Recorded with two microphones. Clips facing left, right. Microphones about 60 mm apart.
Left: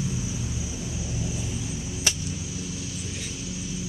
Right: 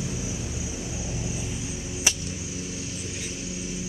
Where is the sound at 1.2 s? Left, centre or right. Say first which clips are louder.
Left 2 dB; centre.